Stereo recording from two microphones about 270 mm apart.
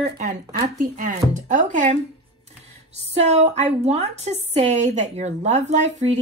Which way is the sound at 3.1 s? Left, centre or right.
Right.